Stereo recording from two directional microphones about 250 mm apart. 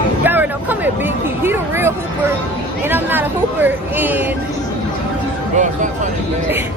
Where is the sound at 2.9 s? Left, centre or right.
Centre.